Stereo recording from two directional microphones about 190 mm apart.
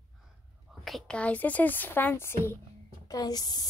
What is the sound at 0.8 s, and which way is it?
A woman's voice, 5° left (ahead or behind).